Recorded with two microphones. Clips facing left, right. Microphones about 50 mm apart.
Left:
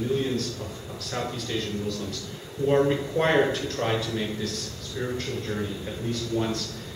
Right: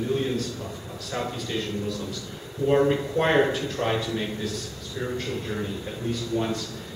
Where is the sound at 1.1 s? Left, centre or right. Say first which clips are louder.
Right 1 dB; centre.